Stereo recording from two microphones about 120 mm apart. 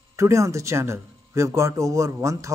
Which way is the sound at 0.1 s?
25° right (ahead or behind).